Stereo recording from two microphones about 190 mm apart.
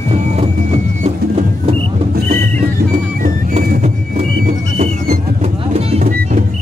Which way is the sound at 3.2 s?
45° right (ahead or behind).